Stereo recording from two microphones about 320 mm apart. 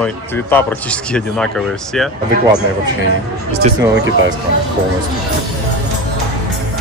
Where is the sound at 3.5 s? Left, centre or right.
Right.